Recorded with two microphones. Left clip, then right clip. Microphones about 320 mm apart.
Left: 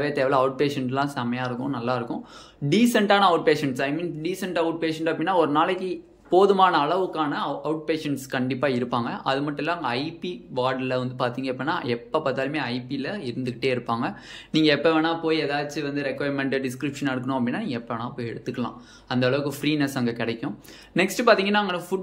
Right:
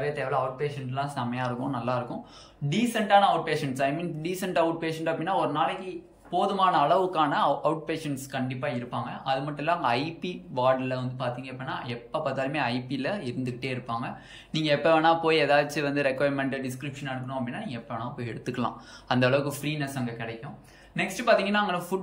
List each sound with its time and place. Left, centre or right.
0.0 s speech: centre
1.1 s speech: centre
2.7 s speech: centre
18.2 s speech: centre